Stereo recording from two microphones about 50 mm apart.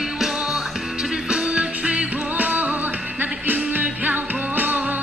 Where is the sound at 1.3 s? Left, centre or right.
Right.